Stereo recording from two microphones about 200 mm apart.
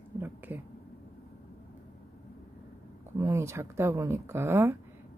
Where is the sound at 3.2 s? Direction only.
15° right (ahead or behind).